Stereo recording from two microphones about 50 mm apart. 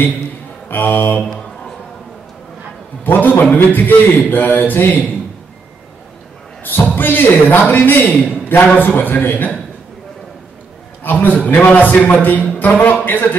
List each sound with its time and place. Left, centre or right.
0.7 s a man's voice: left
3.0 s a man's voice: left
6.6 s a man's voice: left
11.1 s a man's voice: left